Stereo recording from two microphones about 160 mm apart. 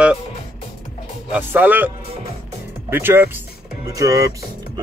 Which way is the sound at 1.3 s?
10° right (ahead or behind).